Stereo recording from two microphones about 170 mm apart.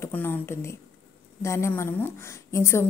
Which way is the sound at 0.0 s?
10° left (ahead or behind).